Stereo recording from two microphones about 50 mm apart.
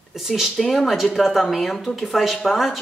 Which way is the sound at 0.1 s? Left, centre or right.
Centre.